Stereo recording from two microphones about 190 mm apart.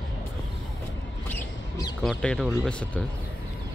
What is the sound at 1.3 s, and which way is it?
Rodents, 20° left (ahead or behind).